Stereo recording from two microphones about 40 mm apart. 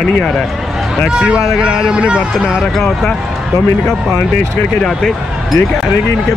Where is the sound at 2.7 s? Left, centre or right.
Centre.